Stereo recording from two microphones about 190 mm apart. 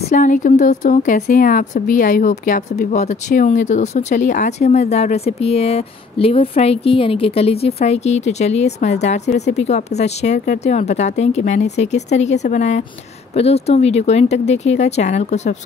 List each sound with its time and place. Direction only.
0.1 s a woman's voice: 40° left (ahead or behind)